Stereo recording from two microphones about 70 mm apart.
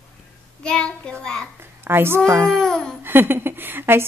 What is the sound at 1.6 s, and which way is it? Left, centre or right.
Speech, right.